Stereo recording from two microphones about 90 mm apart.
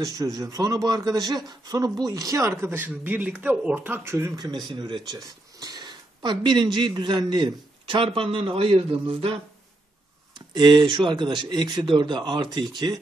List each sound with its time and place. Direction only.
0.0 s speech: 40° right (ahead or behind); by 3.9 s 15° right (ahead or behind)
3.9 s speech: 30° right (ahead or behind)
4.6 s a man's voice: 60° right (ahead or behind); by 9.4 s 90° right
10.5 s speech: 55° right (ahead or behind)